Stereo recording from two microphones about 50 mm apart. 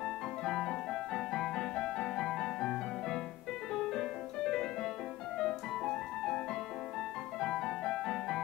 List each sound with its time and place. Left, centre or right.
0.0 s music: centre
7.3 s music: centre